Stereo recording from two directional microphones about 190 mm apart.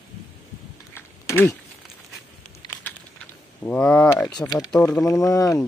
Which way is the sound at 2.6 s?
15° left (ahead or behind).